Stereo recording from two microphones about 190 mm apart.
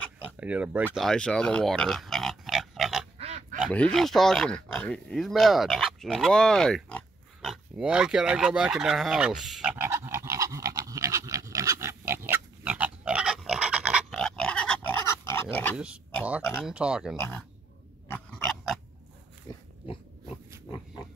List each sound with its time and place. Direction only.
0.4 s speech: 5° right (ahead or behind)
3.2 s quack: 35° right (ahead or behind)
3.6 s speech: 5° left (ahead or behind)
7.7 s a sound: 5° right (ahead or behind); by 15.4 s 15° left (ahead or behind)
15.5 s speech: 10° left (ahead or behind)
16.6 s speech: 5° right (ahead or behind)
17.2 s speech: 10° left (ahead or behind)
18.1 s dog: 5° left (ahead or behind)
19.9 s pig: 25° left (ahead or behind)